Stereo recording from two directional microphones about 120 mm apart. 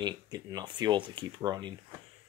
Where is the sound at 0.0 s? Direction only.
35° right (ahead or behind).